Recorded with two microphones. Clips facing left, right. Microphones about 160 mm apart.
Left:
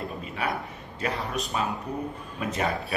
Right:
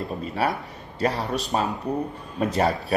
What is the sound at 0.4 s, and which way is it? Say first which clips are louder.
Speech: right 4 dB; 35° right (ahead or behind).